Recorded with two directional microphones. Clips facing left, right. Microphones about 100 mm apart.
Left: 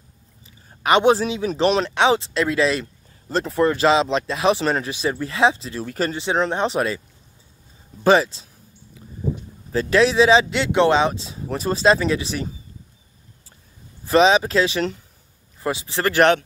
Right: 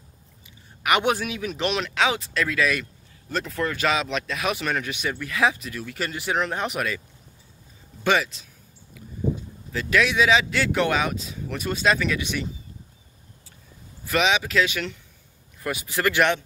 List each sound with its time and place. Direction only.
0.8 s speech: 30° left (ahead or behind)
8.0 s speech: 30° left (ahead or behind)
9.7 s speech: 35° left (ahead or behind)
14.0 s speech: 35° left (ahead or behind)